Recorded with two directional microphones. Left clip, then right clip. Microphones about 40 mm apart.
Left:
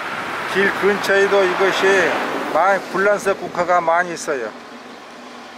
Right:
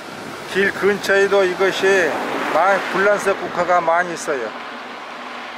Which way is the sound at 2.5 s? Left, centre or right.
Right.